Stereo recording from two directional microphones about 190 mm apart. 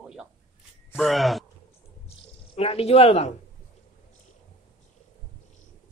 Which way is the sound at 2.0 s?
30° left (ahead or behind).